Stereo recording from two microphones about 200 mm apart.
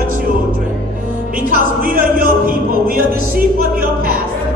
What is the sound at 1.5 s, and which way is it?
Music, 45° right (ahead or behind).